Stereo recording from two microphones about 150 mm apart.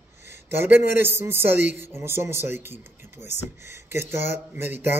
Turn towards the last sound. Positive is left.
turn(degrees=-15)  # may be behind; listen again after turning